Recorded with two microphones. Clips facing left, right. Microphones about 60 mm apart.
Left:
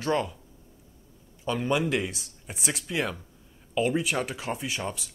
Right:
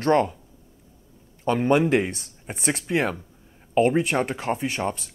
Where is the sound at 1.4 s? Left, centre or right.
Right.